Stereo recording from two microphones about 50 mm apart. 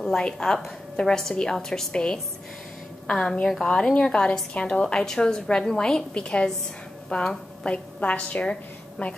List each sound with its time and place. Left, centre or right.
0.0 s a woman's voice: centre